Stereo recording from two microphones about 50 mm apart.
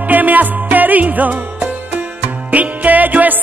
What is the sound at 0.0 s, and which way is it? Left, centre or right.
Music, right.